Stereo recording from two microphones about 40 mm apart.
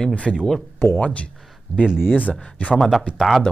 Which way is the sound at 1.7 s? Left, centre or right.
Right.